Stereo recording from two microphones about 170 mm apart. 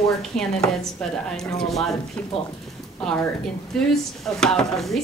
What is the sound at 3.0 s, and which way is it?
Speech, 5° left (ahead or behind).